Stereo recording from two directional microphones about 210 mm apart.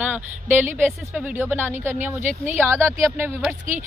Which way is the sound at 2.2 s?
35° right (ahead or behind).